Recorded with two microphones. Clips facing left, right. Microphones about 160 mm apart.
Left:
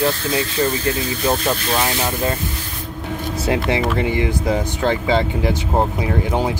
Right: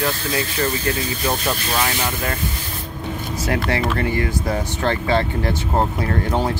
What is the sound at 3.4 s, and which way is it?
Speech, 20° left (ahead or behind).